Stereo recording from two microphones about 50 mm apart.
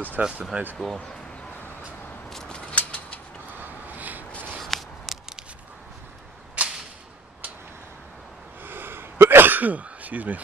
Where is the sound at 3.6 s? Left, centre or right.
Right.